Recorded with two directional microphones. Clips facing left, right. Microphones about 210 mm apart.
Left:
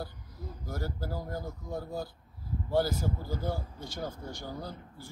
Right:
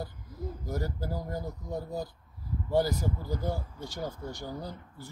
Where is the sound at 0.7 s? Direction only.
15° right (ahead or behind).